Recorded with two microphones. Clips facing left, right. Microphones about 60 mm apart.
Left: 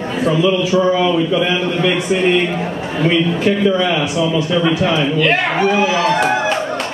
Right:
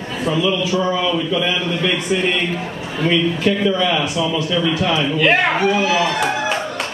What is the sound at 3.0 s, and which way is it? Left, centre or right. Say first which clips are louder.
A man's voice: left 2 dB; centre.